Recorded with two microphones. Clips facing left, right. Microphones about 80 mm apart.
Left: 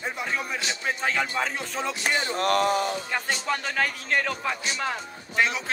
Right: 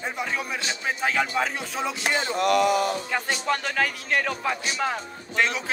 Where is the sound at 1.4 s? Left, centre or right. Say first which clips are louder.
Right 2 dB; centre.